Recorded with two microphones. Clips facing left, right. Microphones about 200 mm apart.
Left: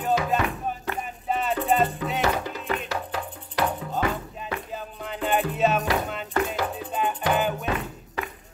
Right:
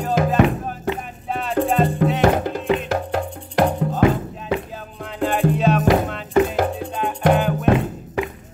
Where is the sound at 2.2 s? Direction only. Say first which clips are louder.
Right 8 dB; 50° right (ahead or behind).